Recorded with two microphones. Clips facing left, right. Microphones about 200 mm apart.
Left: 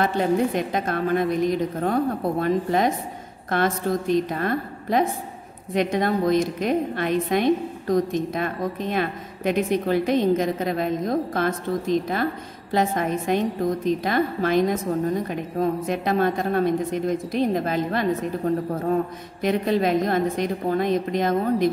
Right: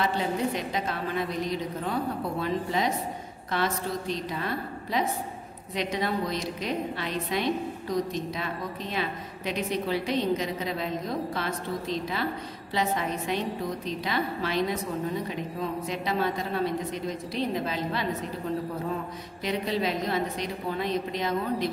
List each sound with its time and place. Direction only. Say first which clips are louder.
0.0 s a woman's voice: left 6 dB; 50° left (ahead or behind)